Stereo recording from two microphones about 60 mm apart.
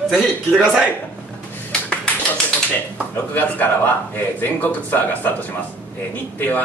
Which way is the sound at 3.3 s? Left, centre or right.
Left.